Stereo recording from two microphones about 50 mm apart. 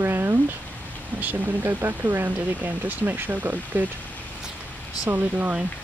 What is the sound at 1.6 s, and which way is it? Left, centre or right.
Speech, right.